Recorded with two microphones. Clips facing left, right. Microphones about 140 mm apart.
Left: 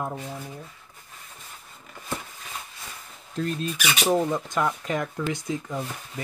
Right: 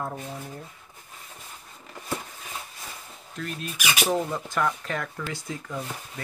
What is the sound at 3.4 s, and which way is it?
Speech, 30° left (ahead or behind).